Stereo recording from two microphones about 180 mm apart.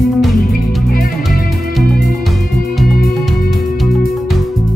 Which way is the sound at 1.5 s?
Centre (ahead or behind).